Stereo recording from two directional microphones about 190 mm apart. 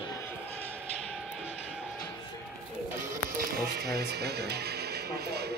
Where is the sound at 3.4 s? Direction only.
55° right (ahead or behind).